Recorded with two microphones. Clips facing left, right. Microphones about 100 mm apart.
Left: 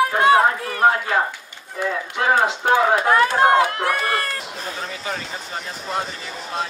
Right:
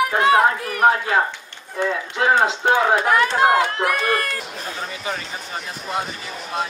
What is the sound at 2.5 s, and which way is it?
Speech, 20° right (ahead or behind).